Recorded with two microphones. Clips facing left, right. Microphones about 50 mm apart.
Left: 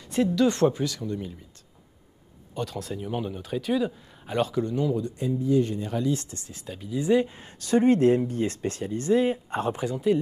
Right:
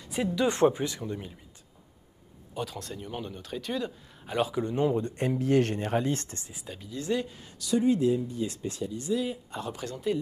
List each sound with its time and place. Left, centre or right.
0.0 s a sound: centre
0.4 s speech: centre
2.5 s speech: centre
4.4 s speech: centre
4.6 s speech: right
5.1 s speech: right
5.9 s speech: right
6.7 s speech: centre
7.0 s speech: centre
7.5 s speech: left
9.8 s speech: centre